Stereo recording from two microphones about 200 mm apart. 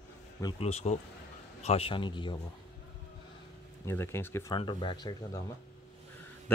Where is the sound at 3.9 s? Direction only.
10° left (ahead or behind).